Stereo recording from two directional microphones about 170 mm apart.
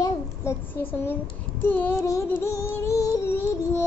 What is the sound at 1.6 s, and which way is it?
A child's voice, 10° left (ahead or behind).